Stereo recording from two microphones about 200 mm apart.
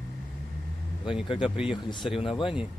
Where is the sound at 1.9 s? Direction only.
Centre (ahead or behind).